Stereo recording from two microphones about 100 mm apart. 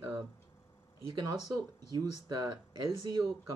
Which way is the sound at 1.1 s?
45° right (ahead or behind).